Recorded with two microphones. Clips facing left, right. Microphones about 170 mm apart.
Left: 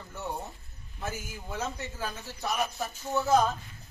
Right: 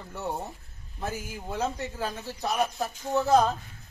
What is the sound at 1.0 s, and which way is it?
A woman's voice, 35° right (ahead or behind).